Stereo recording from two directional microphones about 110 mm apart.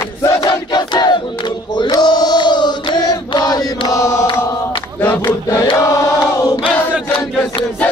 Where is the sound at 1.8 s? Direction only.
40° left (ahead or behind).